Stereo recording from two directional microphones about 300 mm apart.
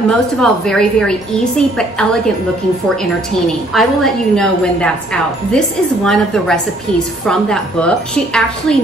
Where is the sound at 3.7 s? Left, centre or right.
Centre.